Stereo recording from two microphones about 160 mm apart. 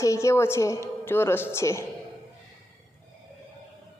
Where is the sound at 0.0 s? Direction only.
20° left (ahead or behind).